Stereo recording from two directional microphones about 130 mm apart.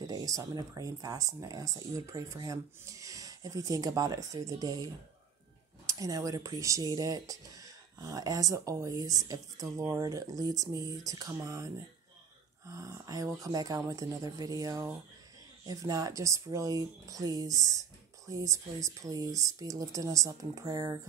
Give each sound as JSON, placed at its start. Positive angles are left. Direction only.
{"t": 0.0, "sound": "speech", "side_deg": -30}